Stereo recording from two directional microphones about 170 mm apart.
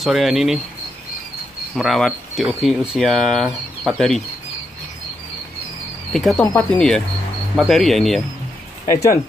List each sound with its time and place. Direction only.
0.0 s speech: centre (ahead or behind)
1.8 s speech: centre (ahead or behind)
6.1 s speech: centre (ahead or behind)
8.8 s speech: 15° left (ahead or behind)